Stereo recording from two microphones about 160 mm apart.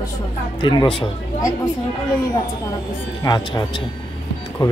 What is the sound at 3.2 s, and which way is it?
Speech, 25° left (ahead or behind).